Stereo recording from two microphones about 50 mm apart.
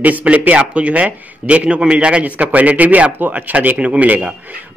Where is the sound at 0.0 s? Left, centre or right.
Right.